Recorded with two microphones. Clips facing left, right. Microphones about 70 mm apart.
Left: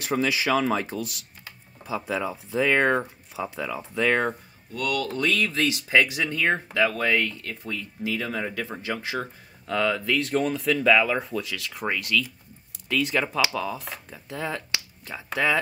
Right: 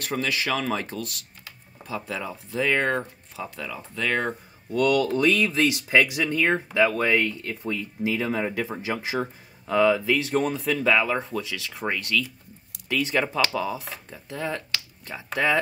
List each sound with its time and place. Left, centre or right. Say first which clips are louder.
0.0 s speech: left 3 dB; centre
4.7 s speech: right 6 dB; right; by 15.6 s centre